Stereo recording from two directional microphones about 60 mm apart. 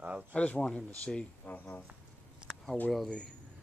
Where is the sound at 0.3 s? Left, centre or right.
Left.